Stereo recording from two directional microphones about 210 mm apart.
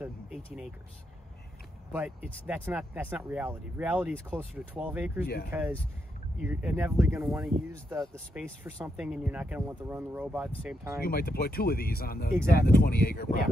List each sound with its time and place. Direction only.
0.0 s vehicle: centre (ahead or behind)
1.9 s speech: 10° right (ahead or behind)
5.2 s speech: 45° left (ahead or behind)
5.5 s speech: 10° right (ahead or behind)
7.2 s speech: centre (ahead or behind)
8.6 s speech: 10° right (ahead or behind)
11.0 s speech: 45° left (ahead or behind)